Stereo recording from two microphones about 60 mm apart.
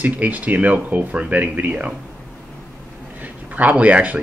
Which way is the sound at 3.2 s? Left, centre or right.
Right.